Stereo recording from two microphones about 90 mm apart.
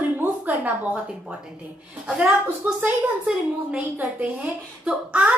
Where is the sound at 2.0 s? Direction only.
15° right (ahead or behind).